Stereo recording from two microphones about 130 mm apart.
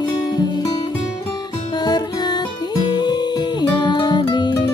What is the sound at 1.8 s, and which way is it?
Music, 30° left (ahead or behind).